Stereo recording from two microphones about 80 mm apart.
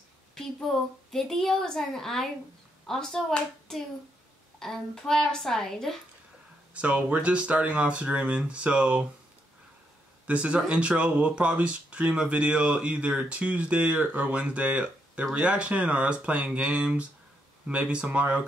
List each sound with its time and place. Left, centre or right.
0.3 s a woman's voice: centre
6.7 s speech: centre
10.2 s speech: centre